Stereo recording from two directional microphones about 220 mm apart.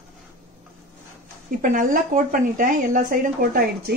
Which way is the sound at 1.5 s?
35° right (ahead or behind).